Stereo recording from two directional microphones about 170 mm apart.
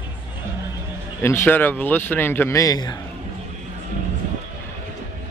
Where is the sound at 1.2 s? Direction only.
15° left (ahead or behind).